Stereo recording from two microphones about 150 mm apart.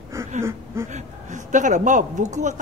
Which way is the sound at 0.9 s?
55° right (ahead or behind).